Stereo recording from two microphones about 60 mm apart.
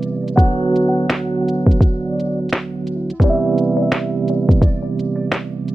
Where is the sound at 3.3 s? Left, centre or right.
Centre.